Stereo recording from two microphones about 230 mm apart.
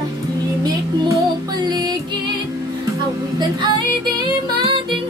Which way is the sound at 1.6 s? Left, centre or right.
Centre.